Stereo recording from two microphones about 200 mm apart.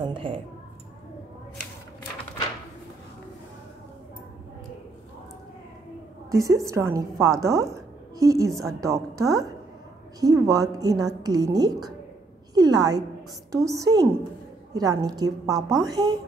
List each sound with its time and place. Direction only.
0.0 s a woman's voice: 25° right (ahead or behind)
6.3 s a woman's voice: 15° right (ahead or behind)